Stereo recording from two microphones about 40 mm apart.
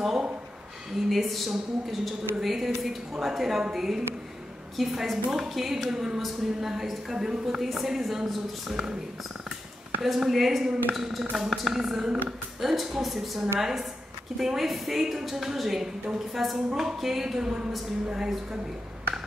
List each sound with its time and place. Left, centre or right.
0.0 s a sound: centre
1.0 s a woman's voice: centre
10.2 s a woman's voice: centre